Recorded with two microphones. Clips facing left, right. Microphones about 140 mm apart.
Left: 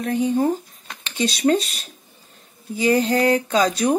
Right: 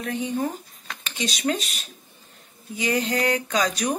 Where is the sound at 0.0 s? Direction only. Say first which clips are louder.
Left 7 dB; 35° left (ahead or behind).